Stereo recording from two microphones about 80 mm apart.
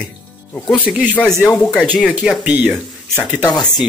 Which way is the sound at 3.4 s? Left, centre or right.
Left.